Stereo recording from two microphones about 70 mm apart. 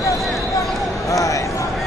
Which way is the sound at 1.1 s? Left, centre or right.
Left.